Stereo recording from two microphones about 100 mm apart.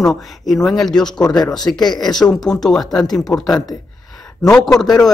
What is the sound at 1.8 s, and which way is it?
Speech, 45° left (ahead or behind).